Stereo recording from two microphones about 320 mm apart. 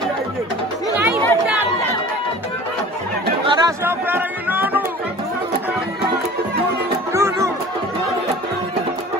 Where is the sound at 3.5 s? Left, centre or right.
Centre.